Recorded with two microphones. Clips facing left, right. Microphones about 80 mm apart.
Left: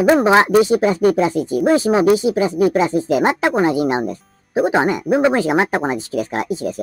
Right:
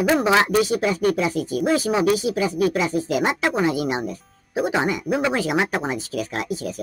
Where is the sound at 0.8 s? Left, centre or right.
Left.